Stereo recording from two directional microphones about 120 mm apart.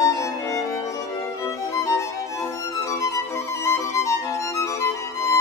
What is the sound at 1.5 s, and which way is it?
Music, 25° left (ahead or behind).